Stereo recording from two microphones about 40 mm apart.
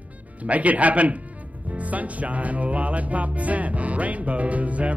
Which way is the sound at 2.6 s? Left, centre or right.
Right.